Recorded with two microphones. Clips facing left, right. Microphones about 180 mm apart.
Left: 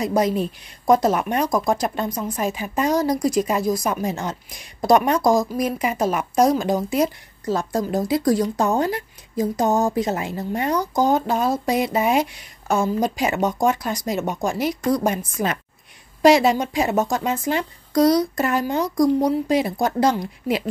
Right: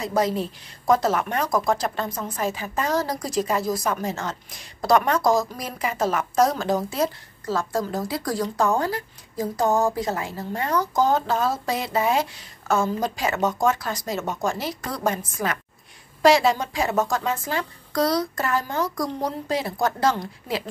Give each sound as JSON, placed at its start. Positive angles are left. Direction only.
{"t": 0.0, "sound": "a woman's voice", "side_deg": 15}